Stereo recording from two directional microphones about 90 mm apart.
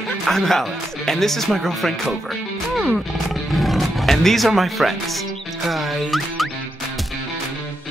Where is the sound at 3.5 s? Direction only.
Centre (ahead or behind).